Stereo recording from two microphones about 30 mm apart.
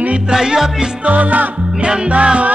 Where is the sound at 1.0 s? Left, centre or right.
Right.